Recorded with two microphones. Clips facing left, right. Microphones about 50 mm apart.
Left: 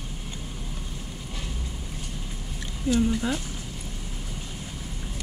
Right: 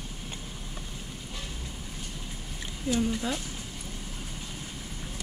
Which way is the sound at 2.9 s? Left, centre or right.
Left.